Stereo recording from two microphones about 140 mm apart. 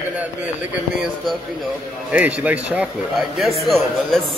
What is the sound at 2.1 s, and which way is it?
Speech, 10° right (ahead or behind).